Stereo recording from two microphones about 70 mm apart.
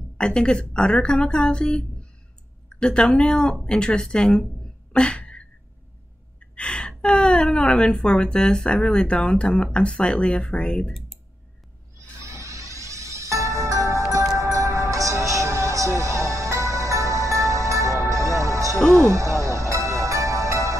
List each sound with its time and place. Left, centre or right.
0.2 s a woman's voice: centre
4.9 s a sound: centre
6.4 s a woman's voice: centre
12.2 s music: right